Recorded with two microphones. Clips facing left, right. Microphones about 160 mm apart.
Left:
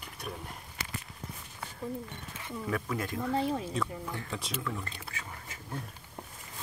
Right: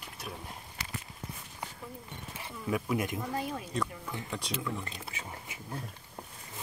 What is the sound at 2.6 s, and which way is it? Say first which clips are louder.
Speech: right 3 dB; 10° right (ahead or behind).